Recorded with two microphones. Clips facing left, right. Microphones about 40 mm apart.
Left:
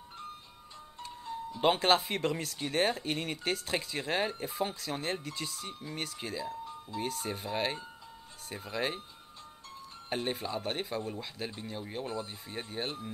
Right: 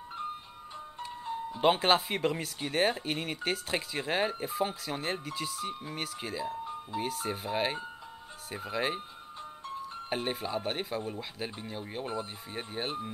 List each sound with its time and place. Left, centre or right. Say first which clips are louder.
0.9 s music: right 3 dB; right
1.6 s speech: right 1 dB; centre
10.0 s speech: even; centre